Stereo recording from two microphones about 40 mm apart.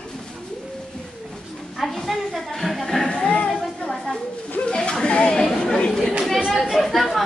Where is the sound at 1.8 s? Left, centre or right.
Centre.